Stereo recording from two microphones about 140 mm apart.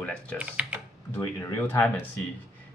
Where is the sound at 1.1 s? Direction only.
15° left (ahead or behind).